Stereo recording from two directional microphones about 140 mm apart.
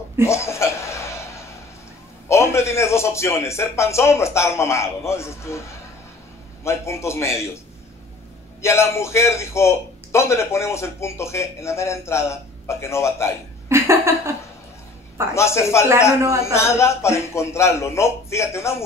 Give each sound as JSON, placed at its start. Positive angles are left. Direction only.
{"t": 0.2, "sound": "chuckle", "side_deg": 20}
{"t": 2.2, "sound": "a man's voice", "side_deg": 20}
{"t": 8.5, "sound": "a man's voice", "side_deg": 20}
{"t": 13.7, "sound": "a sound", "side_deg": -20}
{"t": 15.3, "sound": "a man's voice", "side_deg": 20}
{"t": 16.2, "sound": "a man's voice", "side_deg": -20}
{"t": 16.5, "sound": "a man's voice", "side_deg": 20}